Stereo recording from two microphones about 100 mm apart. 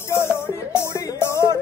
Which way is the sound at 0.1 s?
25° left (ahead or behind).